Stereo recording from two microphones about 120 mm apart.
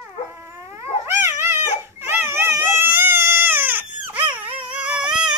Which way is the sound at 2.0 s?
20° right (ahead or behind).